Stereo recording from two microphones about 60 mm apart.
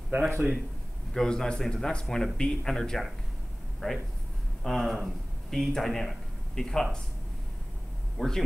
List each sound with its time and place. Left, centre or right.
0.1 s a man's voice: right
1.1 s a man's voice: centre
4.6 s speech: centre
8.2 s a man's voice: centre